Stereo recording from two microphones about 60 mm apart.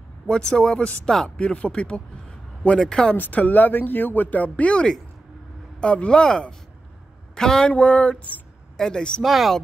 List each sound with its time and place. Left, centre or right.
0.3 s speech: centre
3.2 s speech: left; by 7.7 s centre
7.7 s speech: left
8.7 s speech: centre
9.2 s speech: centre